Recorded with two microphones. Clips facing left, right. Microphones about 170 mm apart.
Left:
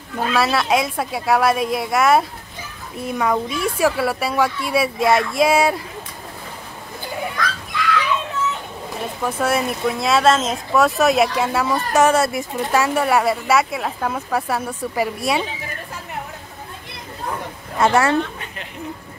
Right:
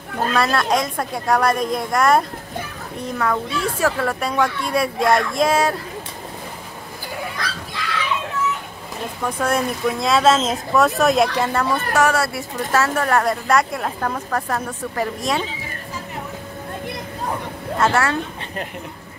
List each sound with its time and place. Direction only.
0.3 s a woman's voice: 5° left (ahead or behind)
9.4 s a woman's voice: 5° left (ahead or behind)
11.9 s speech: 20° left (ahead or behind)
17.7 s speech: 15° left (ahead or behind)